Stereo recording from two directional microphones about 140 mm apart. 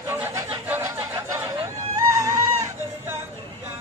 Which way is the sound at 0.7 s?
20° right (ahead or behind).